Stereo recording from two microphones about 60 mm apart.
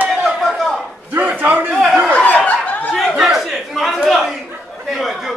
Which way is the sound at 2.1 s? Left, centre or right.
Centre.